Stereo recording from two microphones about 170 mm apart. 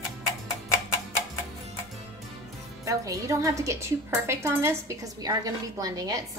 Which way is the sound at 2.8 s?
20° right (ahead or behind).